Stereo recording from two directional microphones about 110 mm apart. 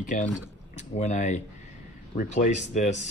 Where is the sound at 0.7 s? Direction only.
90° left.